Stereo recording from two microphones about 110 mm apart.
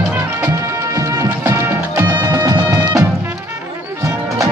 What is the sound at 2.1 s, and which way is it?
Music, 40° right (ahead or behind).